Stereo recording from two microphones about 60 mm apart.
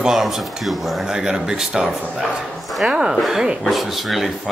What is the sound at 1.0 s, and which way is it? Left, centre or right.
A man's voice, centre.